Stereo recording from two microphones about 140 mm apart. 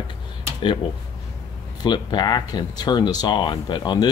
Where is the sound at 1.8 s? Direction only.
30° left (ahead or behind).